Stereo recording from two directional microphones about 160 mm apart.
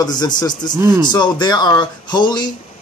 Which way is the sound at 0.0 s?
25° left (ahead or behind).